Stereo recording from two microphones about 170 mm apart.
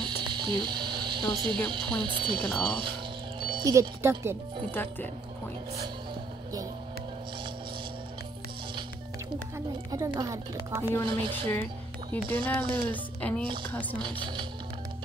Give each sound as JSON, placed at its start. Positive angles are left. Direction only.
{"t": 0.0, "sound": "a sound", "side_deg": -25}
{"t": 1.7, "sound": "speech", "side_deg": -30}
{"t": 2.7, "sound": "music", "side_deg": -30}
{"t": 4.6, "sound": "speech", "side_deg": 10}
{"t": 9.8, "sound": "speech", "side_deg": -20}
{"t": 11.1, "sound": "speech", "side_deg": -30}
{"t": 12.4, "sound": "speech", "side_deg": 10}
{"t": 13.9, "sound": "speech", "side_deg": -30}